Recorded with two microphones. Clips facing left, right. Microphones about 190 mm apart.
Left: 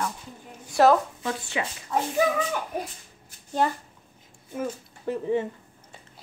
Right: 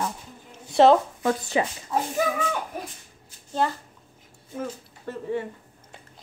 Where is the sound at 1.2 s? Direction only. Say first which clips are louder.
Right 6 dB; 35° right (ahead or behind).